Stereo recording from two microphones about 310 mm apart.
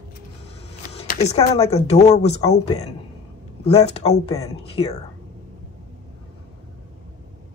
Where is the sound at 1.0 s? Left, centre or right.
Left.